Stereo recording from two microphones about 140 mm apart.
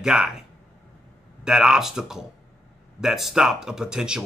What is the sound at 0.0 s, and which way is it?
A man's voice, 5° right (ahead or behind).